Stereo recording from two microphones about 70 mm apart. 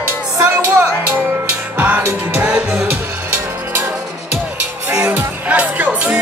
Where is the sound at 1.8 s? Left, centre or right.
Right.